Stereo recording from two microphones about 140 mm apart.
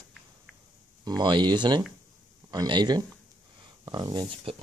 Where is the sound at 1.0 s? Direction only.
30° right (ahead or behind).